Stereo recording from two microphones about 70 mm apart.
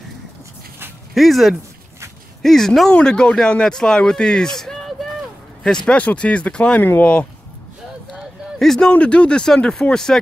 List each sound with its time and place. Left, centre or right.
1.1 s speech: centre
8.5 s speech: centre
8.9 s speech: centre